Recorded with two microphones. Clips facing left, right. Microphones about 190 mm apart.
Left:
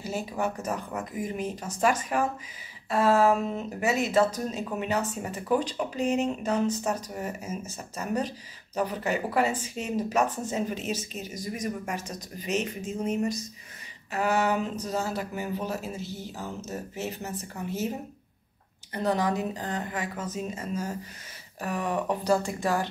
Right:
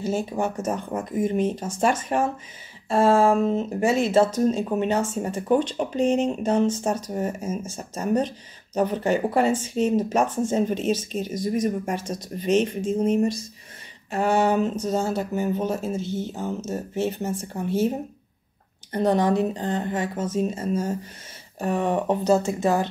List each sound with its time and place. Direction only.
0.1 s speech: 25° right (ahead or behind)
19.0 s speech: 30° right (ahead or behind)